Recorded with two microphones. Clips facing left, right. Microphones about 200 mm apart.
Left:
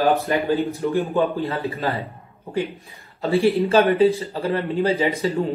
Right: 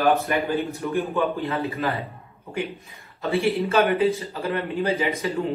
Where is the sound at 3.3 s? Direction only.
35° left (ahead or behind).